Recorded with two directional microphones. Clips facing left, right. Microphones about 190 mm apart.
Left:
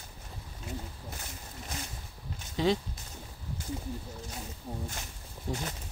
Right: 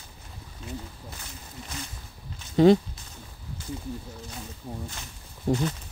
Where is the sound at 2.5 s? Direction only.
50° right (ahead or behind).